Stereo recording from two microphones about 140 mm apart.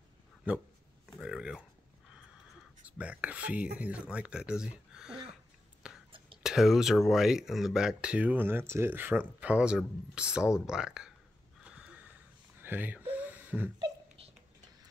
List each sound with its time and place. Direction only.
0.5 s speech: 10° right (ahead or behind)
3.0 s speech: 10° right (ahead or behind)
6.1 s whispering: 40° right (ahead or behind)
6.4 s speech: 5° right (ahead or behind)
11.6 s a sound: 5° right (ahead or behind)